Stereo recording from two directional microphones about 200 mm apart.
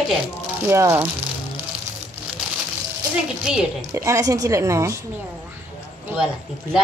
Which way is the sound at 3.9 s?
15° right (ahead or behind).